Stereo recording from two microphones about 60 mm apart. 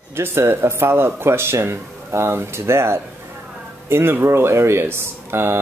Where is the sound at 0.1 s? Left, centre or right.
Right.